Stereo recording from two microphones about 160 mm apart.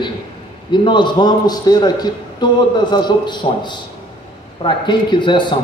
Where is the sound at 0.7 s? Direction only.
30° left (ahead or behind).